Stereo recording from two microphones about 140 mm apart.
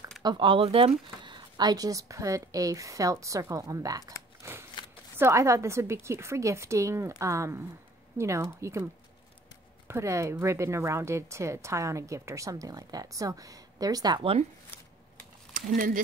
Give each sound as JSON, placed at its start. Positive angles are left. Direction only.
{"t": 0.2, "sound": "speech", "side_deg": -35}
{"t": 4.4, "sound": "scissors", "side_deg": -20}
{"t": 5.1, "sound": "speech", "side_deg": -20}
{"t": 9.8, "sound": "speech", "side_deg": -20}
{"t": 15.5, "sound": "speech", "side_deg": -75}